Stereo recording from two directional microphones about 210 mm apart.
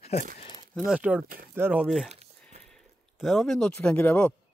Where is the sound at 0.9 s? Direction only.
5° right (ahead or behind).